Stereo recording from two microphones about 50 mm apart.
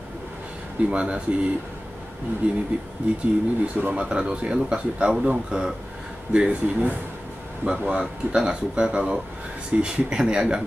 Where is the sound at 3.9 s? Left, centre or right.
Centre.